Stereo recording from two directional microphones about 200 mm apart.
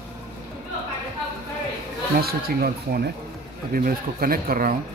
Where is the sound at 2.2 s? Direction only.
50° right (ahead or behind).